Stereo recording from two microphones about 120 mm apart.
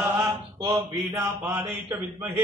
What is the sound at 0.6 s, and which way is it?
Speech, 30° right (ahead or behind).